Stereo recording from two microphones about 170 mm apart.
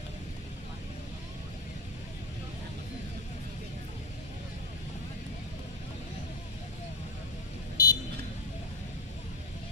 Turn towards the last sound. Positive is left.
turn(degrees=20)  # may be behind; listen again after turning